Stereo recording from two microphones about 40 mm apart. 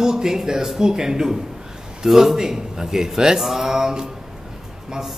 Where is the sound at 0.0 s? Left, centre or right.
Centre.